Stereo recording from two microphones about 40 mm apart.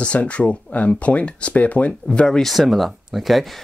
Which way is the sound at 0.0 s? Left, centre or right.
Left.